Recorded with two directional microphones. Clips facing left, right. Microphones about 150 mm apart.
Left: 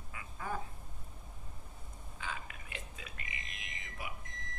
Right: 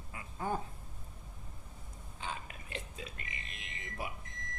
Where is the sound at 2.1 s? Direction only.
30° right (ahead or behind).